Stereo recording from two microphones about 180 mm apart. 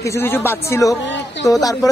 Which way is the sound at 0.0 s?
15° left (ahead or behind).